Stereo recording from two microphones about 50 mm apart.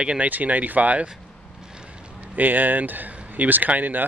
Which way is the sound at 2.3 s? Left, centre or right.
Right.